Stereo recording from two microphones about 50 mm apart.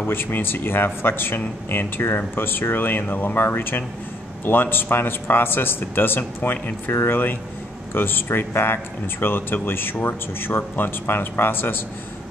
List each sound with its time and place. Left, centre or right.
0.0 s speech: left